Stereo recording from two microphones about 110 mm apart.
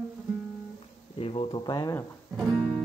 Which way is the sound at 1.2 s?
50° left (ahead or behind).